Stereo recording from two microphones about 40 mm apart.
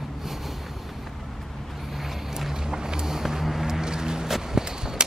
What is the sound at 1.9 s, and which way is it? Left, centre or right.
Vehicle, centre.